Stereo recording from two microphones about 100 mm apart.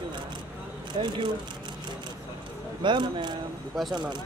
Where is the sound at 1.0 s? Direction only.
75° right (ahead or behind).